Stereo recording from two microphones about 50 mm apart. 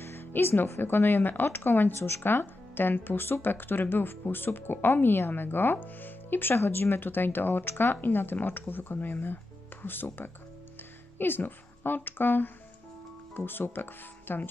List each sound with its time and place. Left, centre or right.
0.0 s music: left
0.7 s speech: left
2.0 s speech: left